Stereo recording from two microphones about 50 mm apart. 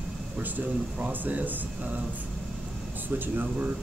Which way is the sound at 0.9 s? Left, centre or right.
Right.